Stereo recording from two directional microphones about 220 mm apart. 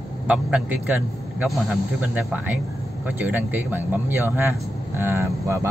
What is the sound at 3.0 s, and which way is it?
Speech, 10° right (ahead or behind).